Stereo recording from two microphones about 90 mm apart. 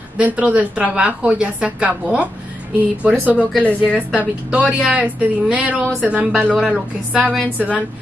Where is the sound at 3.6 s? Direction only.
15° left (ahead or behind).